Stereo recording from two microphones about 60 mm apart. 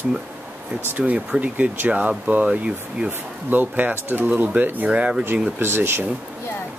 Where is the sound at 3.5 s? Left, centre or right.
Right.